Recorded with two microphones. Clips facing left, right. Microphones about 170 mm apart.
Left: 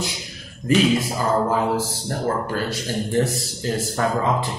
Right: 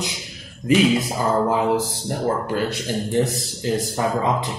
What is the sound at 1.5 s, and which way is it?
A man's voice, 15° right (ahead or behind).